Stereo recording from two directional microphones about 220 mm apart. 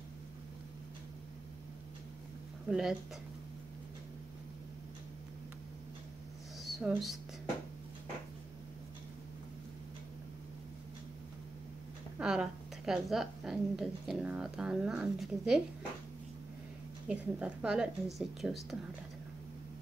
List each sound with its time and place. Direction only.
2.7 s a woman's voice: centre (ahead or behind)
6.6 s speech: centre (ahead or behind)
12.2 s a woman's voice: 5° right (ahead or behind)
17.1 s a woman's voice: 5° right (ahead or behind)